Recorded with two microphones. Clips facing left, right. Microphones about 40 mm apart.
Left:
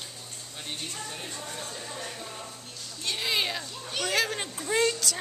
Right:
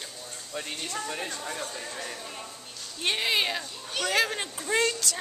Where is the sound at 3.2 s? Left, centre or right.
Centre.